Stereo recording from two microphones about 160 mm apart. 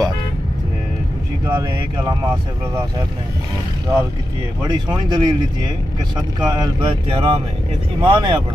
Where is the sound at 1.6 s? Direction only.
25° right (ahead or behind).